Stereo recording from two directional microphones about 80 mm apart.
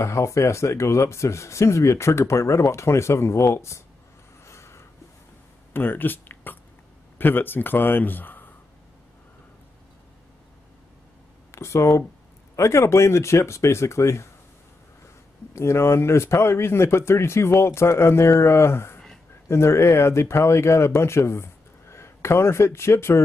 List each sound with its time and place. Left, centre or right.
0.0 s speech: left
4.5 s a sound: left
5.7 s a man's voice: left
11.5 s speech: left
15.5 s speech: left